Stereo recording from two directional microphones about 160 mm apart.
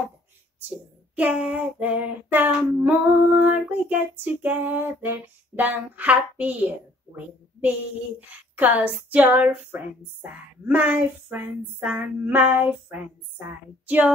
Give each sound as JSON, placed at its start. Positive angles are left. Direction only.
{"t": 1.1, "sound": "child singing", "side_deg": -10}
{"t": 8.5, "sound": "child singing", "side_deg": -10}
{"t": 10.7, "sound": "child singing", "side_deg": -10}
{"t": 13.8, "sound": "speech", "side_deg": -10}